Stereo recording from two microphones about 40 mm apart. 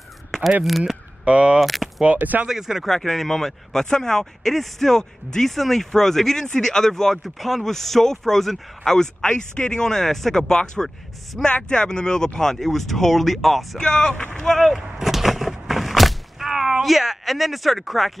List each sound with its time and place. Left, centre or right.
0.7 s speech: centre
1.2 s speech: right
1.6 s a sound: centre
2.1 s speech: right
2.4 s speech: centre
2.9 s speech: centre
13.7 s speech: centre
14.7 s a sound: centre